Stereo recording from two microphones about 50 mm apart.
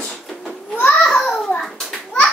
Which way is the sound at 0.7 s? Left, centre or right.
Left.